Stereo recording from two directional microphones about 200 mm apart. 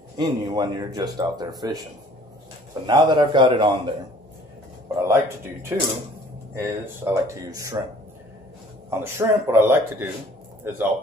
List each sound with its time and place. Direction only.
0.2 s a man's voice: 20° right (ahead or behind)
2.9 s a man's voice: 20° right (ahead or behind)
5.0 s speech: 10° right (ahead or behind)
9.0 s speech: 10° right (ahead or behind)